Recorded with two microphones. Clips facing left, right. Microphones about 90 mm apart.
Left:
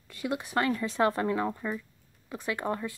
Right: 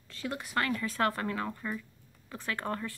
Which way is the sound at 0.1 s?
15° left (ahead or behind).